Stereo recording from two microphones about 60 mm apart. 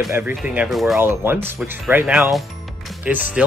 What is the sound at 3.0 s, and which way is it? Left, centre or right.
Speech, right.